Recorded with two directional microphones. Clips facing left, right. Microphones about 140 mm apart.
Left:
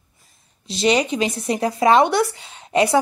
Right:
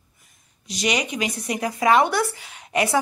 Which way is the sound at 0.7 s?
30° left (ahead or behind).